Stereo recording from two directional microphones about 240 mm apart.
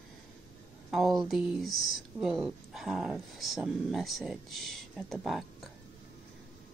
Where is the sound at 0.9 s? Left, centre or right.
Centre.